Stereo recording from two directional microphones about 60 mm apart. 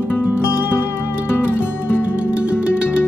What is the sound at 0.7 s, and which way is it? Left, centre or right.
Music, left.